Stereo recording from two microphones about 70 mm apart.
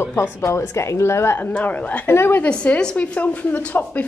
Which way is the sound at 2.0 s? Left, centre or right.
Left.